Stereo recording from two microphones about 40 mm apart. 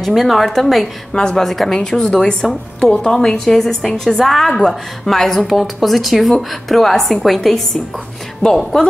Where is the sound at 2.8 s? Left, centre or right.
Left.